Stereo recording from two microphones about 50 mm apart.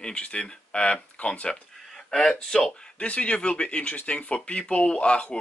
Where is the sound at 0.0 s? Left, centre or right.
Centre.